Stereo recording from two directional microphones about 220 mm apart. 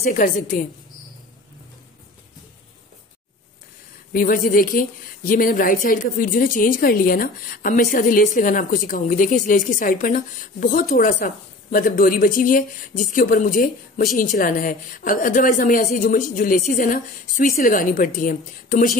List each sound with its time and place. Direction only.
0.0 s speech: 35° left (ahead or behind)
4.1 s speech: 40° left (ahead or behind)